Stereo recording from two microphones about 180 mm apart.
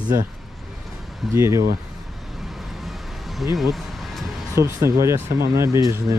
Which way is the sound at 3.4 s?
Centre (ahead or behind).